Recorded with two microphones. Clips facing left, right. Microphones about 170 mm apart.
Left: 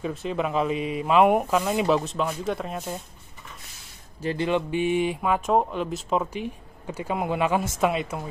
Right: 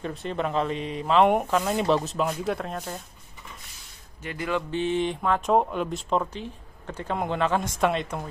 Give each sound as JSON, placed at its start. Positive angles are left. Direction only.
{"t": 0.0, "sound": "speech", "side_deg": 5}
{"t": 4.2, "sound": "music", "side_deg": 30}
{"t": 4.5, "sound": "speech", "side_deg": 15}